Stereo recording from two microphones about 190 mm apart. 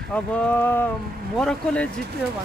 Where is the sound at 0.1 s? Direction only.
5° left (ahead or behind).